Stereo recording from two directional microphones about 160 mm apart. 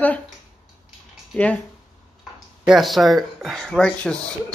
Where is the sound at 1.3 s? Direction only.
10° left (ahead or behind).